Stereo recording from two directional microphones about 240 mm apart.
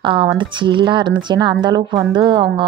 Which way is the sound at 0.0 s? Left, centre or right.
Right.